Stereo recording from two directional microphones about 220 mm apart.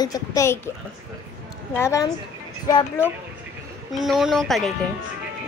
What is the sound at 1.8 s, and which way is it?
A woman's voice, 15° left (ahead or behind).